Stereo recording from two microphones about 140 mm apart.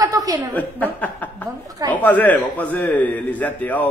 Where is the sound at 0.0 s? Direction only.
25° right (ahead or behind).